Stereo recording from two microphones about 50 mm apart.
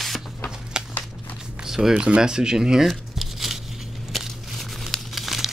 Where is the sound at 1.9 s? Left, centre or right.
Right.